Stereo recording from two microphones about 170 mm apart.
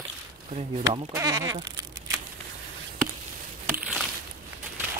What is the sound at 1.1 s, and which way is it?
Speech, 20° right (ahead or behind).